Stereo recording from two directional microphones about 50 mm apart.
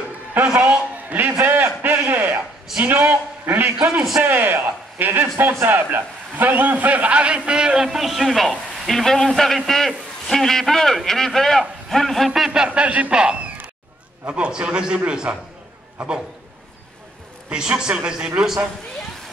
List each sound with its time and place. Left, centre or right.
0.5 s a man's voice: right
1.4 s a sound: right
2.8 s a man's voice: right; by 12.3 s centre
12.4 s a man's voice: centre
12.6 s a man's voice: right
17.5 s a man's voice: centre